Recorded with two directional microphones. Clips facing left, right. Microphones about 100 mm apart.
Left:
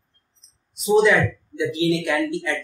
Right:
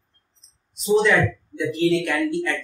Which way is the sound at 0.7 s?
Centre (ahead or behind).